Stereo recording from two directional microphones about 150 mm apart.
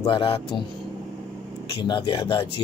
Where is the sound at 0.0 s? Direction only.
35° left (ahead or behind).